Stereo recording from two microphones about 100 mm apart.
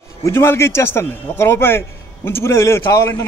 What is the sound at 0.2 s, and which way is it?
A man's voice, 25° left (ahead or behind).